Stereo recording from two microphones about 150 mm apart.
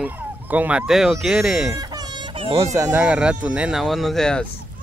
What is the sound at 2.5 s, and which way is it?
Speech, 20° right (ahead or behind).